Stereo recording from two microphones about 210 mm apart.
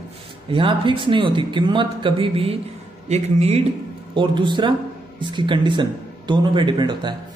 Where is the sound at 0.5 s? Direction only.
25° right (ahead or behind).